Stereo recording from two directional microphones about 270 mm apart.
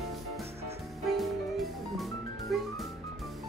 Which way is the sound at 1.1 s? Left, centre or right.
Centre.